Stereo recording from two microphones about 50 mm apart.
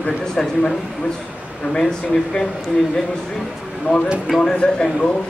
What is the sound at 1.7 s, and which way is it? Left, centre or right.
Speech, centre.